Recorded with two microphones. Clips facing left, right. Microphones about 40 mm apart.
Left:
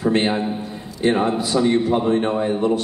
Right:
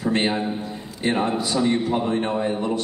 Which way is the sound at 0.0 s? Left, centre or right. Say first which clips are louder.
Left 3 dB; centre.